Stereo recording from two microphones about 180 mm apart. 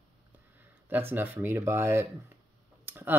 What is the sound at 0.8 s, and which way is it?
Speech, 10° right (ahead or behind).